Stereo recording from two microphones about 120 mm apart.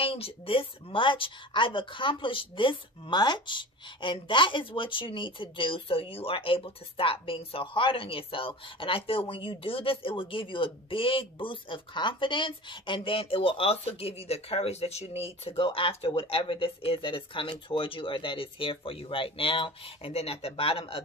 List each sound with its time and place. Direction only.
0.0 s speech: 50° left (ahead or behind)